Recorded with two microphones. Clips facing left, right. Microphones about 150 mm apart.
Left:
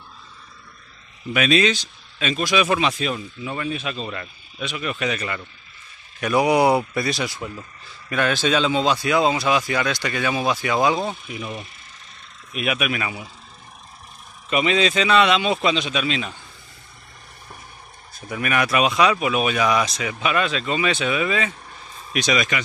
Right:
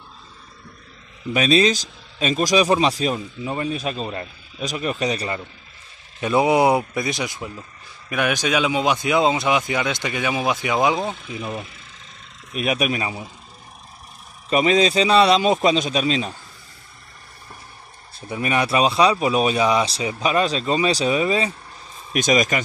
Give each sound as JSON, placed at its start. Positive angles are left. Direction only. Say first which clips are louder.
{"t": 1.3, "sound": "speech", "louder": "right 2 dB", "side_deg": -35}
{"t": 6.2, "sound": "speech", "louder": "right 1 dB", "side_deg": -25}
{"t": 14.5, "sound": "speech", "louder": "right 3 dB", "side_deg": -40}
{"t": 18.3, "sound": "speech", "louder": "right 1 dB", "side_deg": -30}